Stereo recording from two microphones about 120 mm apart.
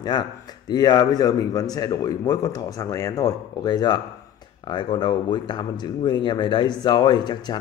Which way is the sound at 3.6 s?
35° left (ahead or behind).